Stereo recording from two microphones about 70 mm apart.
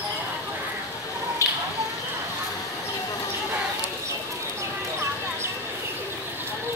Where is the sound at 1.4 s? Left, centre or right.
Left.